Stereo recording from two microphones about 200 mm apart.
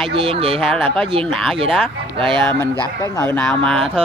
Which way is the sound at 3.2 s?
5° left (ahead or behind).